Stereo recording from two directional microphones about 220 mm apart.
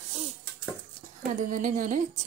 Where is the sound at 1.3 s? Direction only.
35° right (ahead or behind).